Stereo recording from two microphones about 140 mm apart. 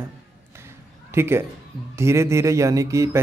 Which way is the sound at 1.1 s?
15° right (ahead or behind).